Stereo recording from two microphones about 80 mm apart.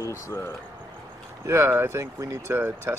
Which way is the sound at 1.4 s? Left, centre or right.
Right.